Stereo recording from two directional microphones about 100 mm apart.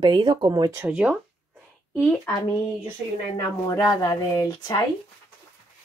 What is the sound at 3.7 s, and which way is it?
Speech, 40° left (ahead or behind).